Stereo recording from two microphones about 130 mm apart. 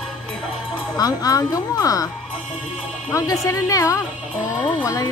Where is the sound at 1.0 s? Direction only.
30° left (ahead or behind).